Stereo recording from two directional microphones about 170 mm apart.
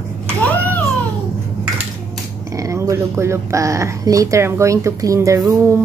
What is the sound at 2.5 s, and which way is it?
Speech, 20° right (ahead or behind).